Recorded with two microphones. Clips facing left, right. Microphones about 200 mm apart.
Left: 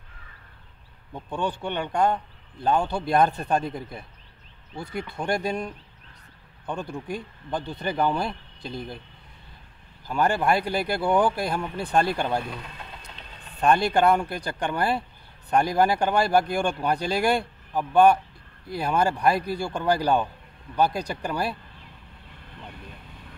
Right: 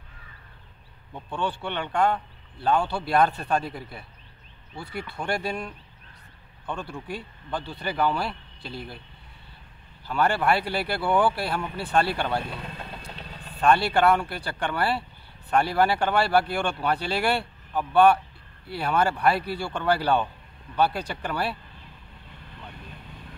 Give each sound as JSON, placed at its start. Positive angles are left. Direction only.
{"t": 1.1, "sound": "speech", "side_deg": 15}
{"t": 10.0, "sound": "speech", "side_deg": 15}
{"t": 12.7, "sound": "vehicle", "side_deg": -35}
{"t": 13.6, "sound": "speech", "side_deg": 15}